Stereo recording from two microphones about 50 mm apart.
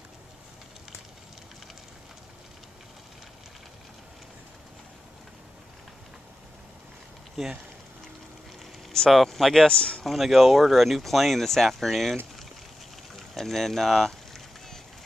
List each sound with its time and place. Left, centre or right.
7.4 s speech: centre
9.1 s speech: centre
9.7 s speech: centre
10.0 s speech: centre